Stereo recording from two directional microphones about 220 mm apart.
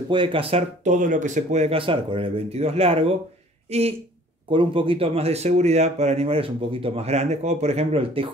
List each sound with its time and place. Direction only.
0.1 s speech: 20° right (ahead or behind)